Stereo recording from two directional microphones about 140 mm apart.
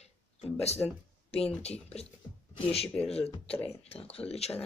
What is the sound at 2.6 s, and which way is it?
Speech, 45° left (ahead or behind).